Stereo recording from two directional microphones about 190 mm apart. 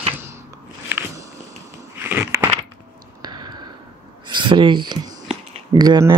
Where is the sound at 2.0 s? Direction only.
10° right (ahead or behind).